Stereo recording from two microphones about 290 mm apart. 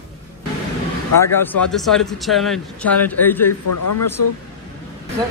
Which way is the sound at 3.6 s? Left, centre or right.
Left.